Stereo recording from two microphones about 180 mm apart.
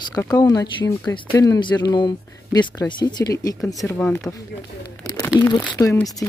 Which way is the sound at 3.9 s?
10° left (ahead or behind).